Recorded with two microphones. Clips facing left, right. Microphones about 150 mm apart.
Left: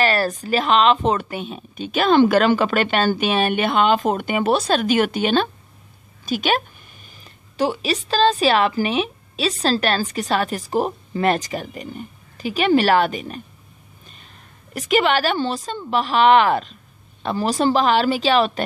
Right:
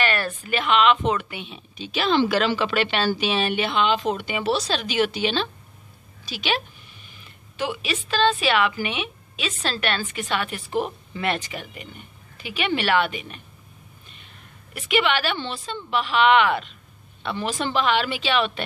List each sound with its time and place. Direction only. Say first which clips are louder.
0.0 s a woman's voice: left 5 dB; 35° left (ahead or behind)
14.7 s a woman's voice: left 4 dB; 40° left (ahead or behind)